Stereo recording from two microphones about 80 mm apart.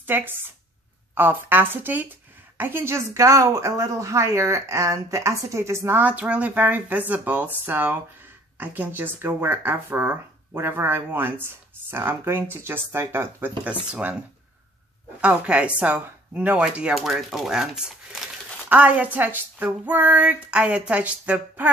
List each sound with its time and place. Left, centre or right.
0.0 s speech: right
6.0 s speech: centre
13.7 s speech: centre
16.9 s speech: centre
18.7 s speech: centre